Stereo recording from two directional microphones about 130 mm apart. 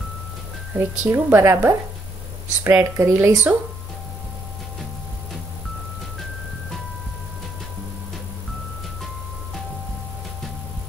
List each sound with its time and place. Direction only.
0.7 s a woman's voice: 15° right (ahead or behind)